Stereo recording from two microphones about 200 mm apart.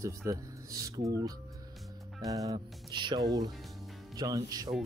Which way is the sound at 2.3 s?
15° right (ahead or behind).